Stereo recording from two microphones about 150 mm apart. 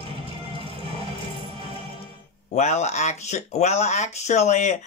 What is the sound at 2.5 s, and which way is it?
Speech, 50° left (ahead or behind).